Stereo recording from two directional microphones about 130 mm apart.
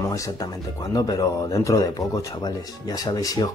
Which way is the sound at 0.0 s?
25° left (ahead or behind).